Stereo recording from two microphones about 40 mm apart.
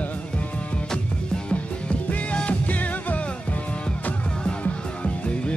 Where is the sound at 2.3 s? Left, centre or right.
Left.